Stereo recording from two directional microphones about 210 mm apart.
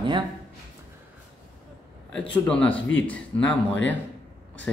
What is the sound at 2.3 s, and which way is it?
A man's voice, 5° left (ahead or behind).